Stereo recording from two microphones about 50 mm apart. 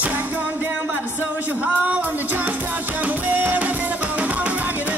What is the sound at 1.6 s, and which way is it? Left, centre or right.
Music, right.